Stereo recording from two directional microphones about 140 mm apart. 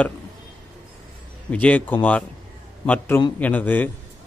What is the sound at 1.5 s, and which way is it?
A man's voice, 10° left (ahead or behind).